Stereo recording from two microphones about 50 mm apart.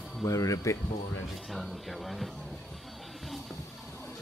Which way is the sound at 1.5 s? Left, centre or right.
Centre.